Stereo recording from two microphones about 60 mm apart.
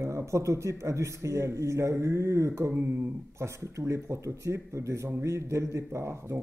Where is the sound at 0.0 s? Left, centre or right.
Right.